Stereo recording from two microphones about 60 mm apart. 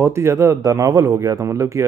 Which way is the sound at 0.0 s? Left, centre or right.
Right.